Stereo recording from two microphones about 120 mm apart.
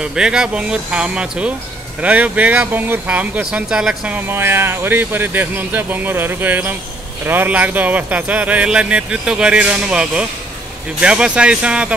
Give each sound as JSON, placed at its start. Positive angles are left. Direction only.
{"t": 0.0, "sound": "speech", "side_deg": -5}
{"t": 4.3, "sound": "speech", "side_deg": -20}